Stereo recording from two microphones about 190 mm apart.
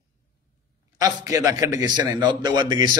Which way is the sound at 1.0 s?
15° right (ahead or behind).